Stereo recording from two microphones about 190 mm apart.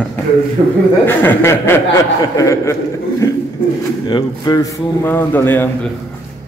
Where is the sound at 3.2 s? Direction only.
15° left (ahead or behind).